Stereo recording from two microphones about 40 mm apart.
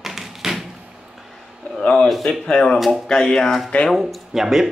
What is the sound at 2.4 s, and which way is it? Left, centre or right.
Speech, left.